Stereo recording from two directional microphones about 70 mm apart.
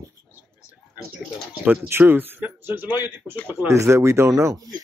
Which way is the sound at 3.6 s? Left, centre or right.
Right.